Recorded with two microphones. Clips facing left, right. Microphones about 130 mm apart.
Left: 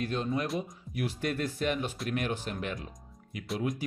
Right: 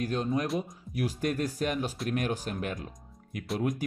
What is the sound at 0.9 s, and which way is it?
Speech, 40° right (ahead or behind).